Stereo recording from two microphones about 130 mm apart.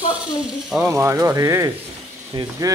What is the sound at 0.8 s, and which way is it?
Speech, 15° right (ahead or behind).